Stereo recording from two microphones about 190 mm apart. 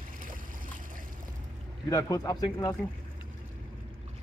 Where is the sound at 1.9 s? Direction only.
20° left (ahead or behind).